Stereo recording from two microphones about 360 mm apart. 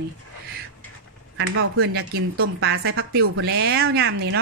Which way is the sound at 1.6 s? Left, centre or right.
Right.